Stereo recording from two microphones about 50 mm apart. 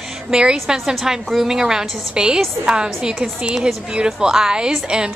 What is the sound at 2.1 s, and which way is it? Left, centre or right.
A woman's voice, centre.